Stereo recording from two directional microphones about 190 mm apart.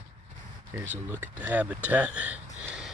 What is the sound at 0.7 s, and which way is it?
Speech, 10° right (ahead or behind).